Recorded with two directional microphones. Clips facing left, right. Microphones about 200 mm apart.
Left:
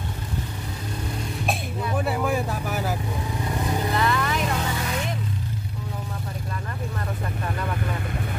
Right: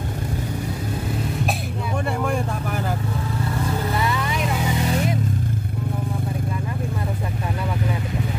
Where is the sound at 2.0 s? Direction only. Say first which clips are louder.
Even; 5° left (ahead or behind).